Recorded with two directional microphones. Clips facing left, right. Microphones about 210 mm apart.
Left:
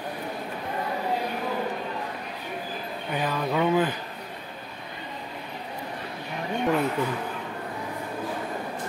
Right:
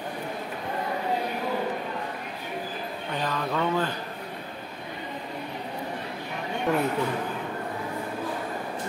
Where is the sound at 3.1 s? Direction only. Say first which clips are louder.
Left 2 dB; 10° left (ahead or behind).